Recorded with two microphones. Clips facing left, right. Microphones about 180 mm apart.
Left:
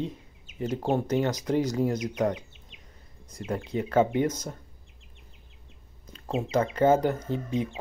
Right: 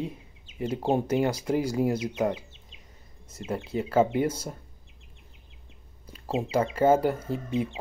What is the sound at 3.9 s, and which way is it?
Speech, 10° right (ahead or behind).